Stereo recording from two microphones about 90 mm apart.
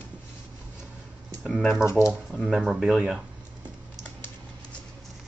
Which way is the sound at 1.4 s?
Centre (ahead or behind).